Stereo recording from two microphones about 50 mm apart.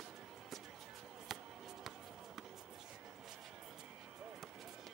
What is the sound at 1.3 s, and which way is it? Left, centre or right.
Basketball bounce, centre.